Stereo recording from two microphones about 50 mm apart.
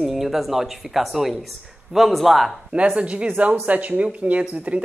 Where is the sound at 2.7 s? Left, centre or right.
Right.